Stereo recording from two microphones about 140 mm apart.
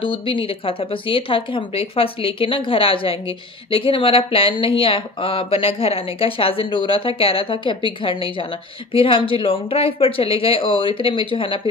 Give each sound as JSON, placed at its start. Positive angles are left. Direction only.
{"t": 0.0, "sound": "speech", "side_deg": 35}